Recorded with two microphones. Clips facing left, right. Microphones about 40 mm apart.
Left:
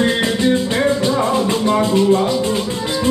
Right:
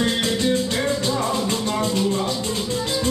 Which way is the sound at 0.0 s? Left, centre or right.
Left.